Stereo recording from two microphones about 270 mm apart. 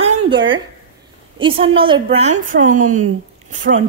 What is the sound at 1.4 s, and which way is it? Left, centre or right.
A woman's voice, centre.